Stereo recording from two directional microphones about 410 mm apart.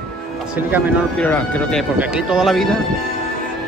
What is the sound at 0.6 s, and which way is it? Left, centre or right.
Speech, centre.